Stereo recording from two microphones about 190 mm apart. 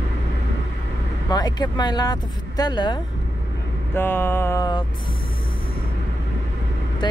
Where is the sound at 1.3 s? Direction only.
20° left (ahead or behind).